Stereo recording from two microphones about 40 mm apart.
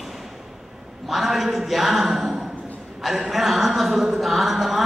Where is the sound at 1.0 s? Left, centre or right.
Centre.